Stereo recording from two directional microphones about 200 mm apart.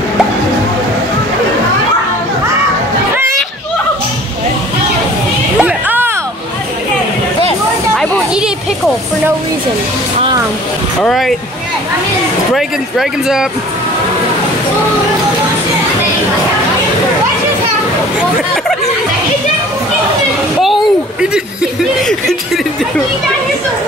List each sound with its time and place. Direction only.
5.6 s music: 10° right (ahead or behind)
7.9 s children playing: centre (ahead or behind)
11.0 s speech: centre (ahead or behind)
12.5 s speech: centre (ahead or behind)
20.6 s a sound: centre (ahead or behind)